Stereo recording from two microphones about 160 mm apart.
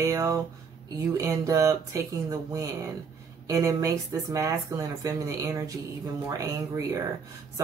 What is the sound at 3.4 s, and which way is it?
Speech, 20° right (ahead or behind).